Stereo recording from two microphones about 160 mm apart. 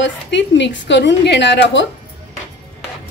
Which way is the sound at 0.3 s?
90° left.